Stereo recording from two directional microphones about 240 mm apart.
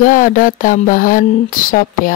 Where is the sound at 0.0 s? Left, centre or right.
Left.